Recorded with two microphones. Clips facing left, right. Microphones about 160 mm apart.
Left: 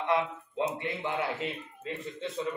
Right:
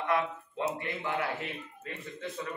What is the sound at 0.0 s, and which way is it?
A man's voice, 20° left (ahead or behind).